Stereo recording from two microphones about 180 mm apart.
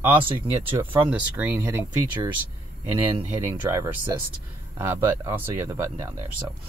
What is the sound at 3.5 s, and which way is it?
Speech, 15° right (ahead or behind).